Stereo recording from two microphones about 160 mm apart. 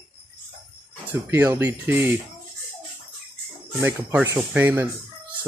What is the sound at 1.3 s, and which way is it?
Speech, 15° right (ahead or behind).